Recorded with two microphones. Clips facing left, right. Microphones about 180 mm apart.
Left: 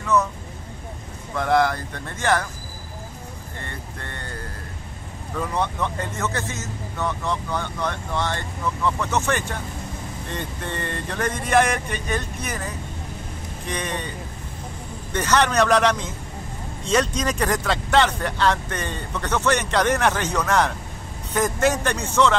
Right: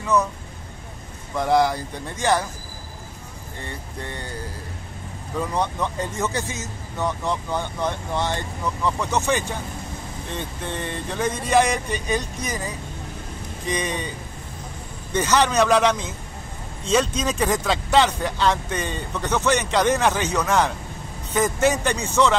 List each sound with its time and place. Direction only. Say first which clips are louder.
0.0 s speech: even; 15° right (ahead or behind)
1.3 s speech: right 1 dB; 5° right (ahead or behind)
5.6 s speech: even; 15° right (ahead or behind)
13.7 s speech: right 1 dB; 10° right (ahead or behind)
15.1 s speech: right 1 dB; 5° right (ahead or behind)
17.2 s speech: right 1 dB; 5° right (ahead or behind)